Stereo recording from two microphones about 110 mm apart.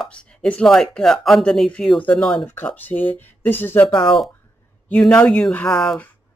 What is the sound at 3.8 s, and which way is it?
Speech, 50° left (ahead or behind).